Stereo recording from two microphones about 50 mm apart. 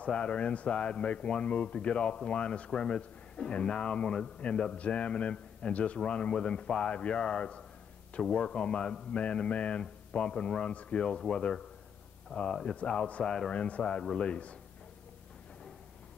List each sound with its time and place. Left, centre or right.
0.1 s speech: centre
12.3 s speech: left
12.7 s speech: left